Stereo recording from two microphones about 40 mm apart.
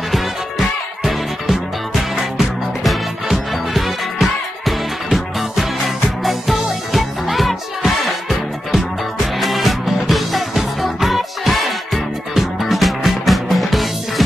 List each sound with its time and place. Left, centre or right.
0.1 s music: centre